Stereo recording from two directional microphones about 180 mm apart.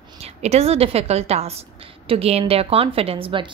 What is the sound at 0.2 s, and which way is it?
A woman's voice, 35° right (ahead or behind).